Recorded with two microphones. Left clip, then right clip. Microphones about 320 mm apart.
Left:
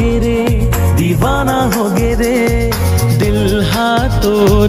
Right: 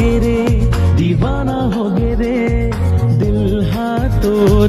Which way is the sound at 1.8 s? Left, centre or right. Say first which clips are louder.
Left 4 dB; left.